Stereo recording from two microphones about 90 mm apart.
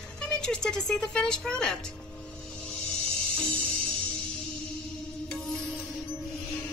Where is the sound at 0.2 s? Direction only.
10° left (ahead or behind).